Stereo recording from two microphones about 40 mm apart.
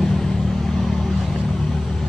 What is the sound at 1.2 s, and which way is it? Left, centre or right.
Vehicle, centre.